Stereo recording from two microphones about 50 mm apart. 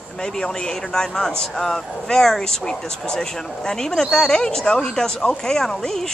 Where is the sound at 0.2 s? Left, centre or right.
Centre.